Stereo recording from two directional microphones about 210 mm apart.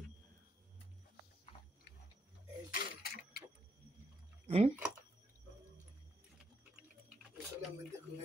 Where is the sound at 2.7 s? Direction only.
45° left (ahead or behind).